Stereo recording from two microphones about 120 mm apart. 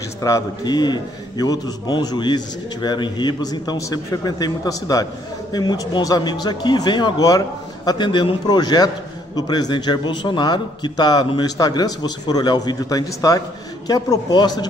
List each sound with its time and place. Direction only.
0.2 s a man's voice: 35° left (ahead or behind)